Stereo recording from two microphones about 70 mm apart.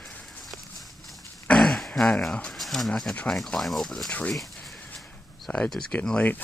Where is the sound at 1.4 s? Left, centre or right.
Centre.